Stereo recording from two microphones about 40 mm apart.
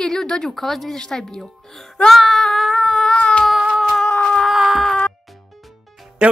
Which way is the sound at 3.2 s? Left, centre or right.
Left.